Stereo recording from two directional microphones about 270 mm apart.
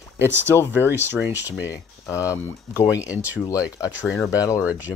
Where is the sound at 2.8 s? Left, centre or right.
Centre.